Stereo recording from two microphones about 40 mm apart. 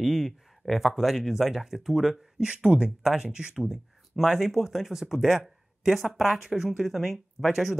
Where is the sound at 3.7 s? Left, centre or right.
Centre.